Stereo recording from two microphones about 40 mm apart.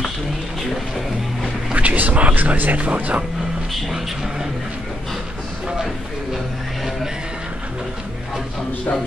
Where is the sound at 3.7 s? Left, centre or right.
Centre.